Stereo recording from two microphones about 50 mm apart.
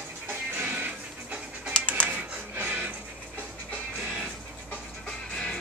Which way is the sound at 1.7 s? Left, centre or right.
Left.